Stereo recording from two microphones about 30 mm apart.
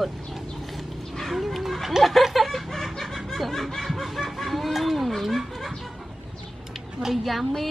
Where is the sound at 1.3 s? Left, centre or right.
Centre.